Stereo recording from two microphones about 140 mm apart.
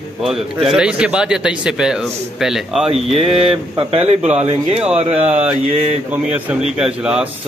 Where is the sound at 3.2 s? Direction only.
45° right (ahead or behind).